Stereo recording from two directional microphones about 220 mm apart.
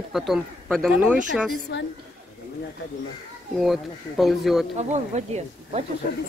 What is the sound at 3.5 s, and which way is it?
Speech, centre (ahead or behind).